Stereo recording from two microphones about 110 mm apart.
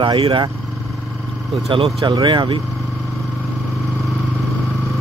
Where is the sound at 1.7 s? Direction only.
50° right (ahead or behind).